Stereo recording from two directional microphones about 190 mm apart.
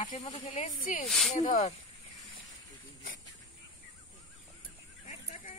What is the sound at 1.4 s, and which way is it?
Speech, 35° left (ahead or behind).